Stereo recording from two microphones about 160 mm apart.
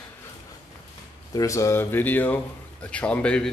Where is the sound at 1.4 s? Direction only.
20° left (ahead or behind).